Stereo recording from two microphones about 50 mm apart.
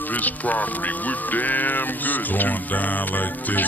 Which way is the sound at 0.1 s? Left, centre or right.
Left.